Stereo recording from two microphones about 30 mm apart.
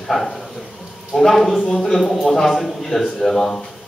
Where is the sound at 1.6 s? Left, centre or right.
Centre.